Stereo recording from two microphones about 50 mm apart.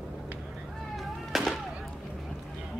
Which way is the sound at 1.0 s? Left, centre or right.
Centre.